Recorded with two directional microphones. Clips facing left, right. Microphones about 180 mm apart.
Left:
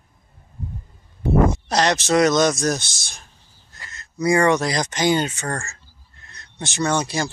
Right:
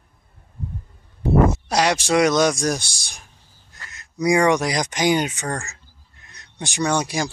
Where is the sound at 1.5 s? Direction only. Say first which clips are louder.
Even; 10° right (ahead or behind).